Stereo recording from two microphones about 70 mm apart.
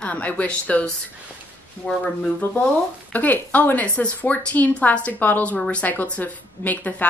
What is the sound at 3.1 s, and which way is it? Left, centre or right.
A woman's voice, left.